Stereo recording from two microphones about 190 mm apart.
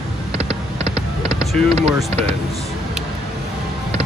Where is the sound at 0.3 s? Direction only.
30° right (ahead or behind).